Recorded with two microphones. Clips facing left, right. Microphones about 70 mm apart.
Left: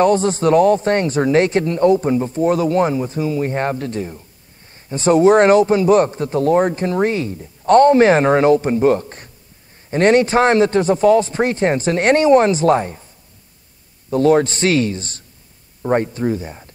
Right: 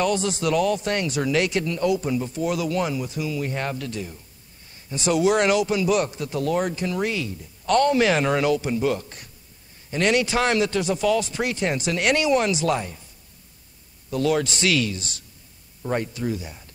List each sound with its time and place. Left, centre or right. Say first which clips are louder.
0.0 s speech: left 9 dB; left
14.1 s speech: left 9 dB; left